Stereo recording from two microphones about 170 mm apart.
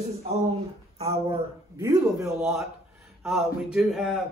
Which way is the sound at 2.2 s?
Centre (ahead or behind).